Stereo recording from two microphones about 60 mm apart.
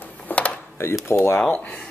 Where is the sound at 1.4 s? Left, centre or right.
Left.